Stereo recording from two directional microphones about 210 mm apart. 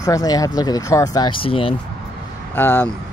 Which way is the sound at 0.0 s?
15° left (ahead or behind).